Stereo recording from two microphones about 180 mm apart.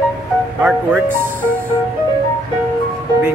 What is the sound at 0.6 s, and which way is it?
Speech, 10° right (ahead or behind).